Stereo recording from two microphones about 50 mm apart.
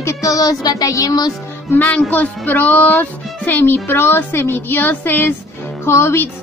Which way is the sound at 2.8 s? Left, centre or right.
Left.